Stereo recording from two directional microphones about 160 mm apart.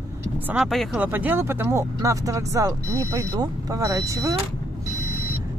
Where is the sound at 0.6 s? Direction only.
Centre (ahead or behind).